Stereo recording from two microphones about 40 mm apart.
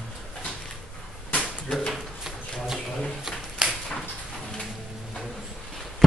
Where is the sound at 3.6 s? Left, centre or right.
Centre.